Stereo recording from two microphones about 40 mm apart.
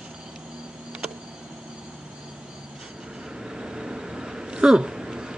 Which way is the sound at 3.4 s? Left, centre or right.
Centre.